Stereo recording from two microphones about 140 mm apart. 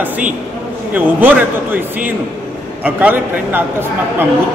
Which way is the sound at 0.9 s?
10° right (ahead or behind).